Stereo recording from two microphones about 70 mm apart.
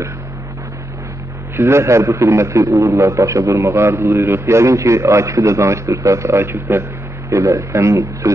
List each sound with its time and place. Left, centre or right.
1.6 s a man's voice: right